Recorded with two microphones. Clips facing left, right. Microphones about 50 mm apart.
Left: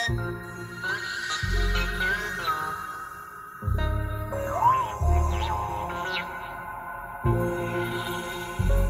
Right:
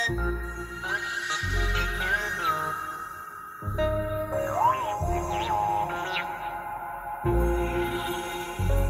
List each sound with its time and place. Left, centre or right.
0.0 s music: right
7.2 s music: right